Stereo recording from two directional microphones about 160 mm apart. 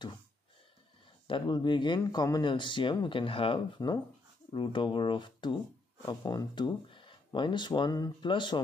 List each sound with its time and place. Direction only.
1.2 s speech: 30° left (ahead or behind)